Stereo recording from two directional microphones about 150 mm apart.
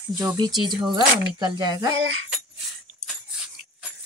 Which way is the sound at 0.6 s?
30° right (ahead or behind).